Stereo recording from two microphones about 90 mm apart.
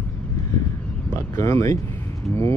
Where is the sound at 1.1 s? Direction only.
35° left (ahead or behind).